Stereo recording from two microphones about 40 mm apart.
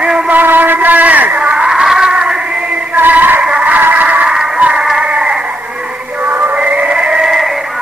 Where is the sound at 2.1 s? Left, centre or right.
Right.